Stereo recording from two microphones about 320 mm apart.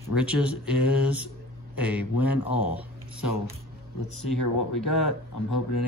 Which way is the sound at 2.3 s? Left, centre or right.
Left.